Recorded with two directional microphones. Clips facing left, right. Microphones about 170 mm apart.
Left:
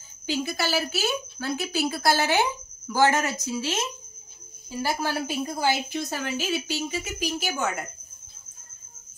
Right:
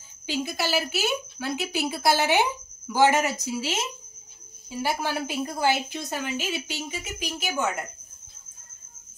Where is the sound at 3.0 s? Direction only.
15° right (ahead or behind).